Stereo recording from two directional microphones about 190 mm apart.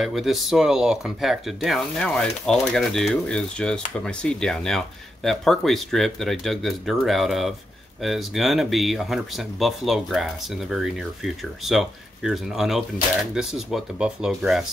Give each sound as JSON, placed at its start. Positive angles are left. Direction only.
{"t": 0.0, "sound": "speech", "side_deg": 0}